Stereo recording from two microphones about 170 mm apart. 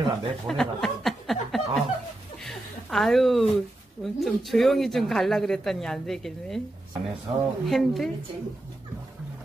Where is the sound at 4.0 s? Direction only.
Centre (ahead or behind).